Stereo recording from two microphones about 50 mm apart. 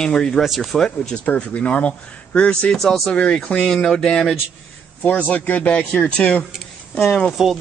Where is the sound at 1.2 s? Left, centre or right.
Left.